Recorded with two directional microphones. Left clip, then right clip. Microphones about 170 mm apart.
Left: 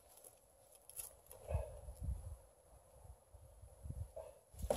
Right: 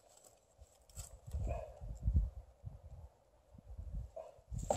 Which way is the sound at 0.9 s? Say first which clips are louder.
Right 3 dB; 15° left (ahead or behind).